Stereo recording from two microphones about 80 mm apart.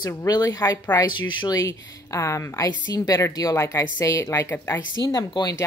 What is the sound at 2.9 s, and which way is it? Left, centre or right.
Speech, left.